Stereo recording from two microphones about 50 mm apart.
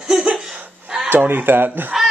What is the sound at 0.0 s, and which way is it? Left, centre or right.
Chuckle, centre.